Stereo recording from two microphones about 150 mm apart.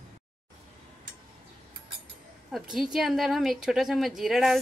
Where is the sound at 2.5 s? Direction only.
Centre (ahead or behind).